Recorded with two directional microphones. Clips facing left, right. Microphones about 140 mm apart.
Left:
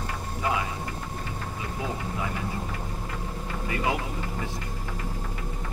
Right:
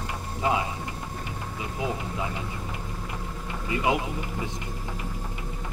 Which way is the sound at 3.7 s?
20° right (ahead or behind).